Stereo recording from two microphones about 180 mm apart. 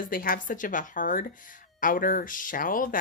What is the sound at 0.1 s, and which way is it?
Speech, 50° left (ahead or behind).